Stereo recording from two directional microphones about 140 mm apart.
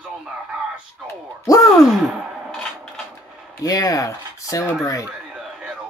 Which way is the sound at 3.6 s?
25° left (ahead or behind).